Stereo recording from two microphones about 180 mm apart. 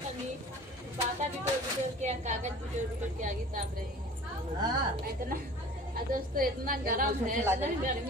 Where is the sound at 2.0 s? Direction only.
40° right (ahead or behind).